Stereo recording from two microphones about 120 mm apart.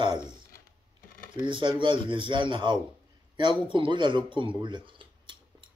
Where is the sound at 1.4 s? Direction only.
40° right (ahead or behind).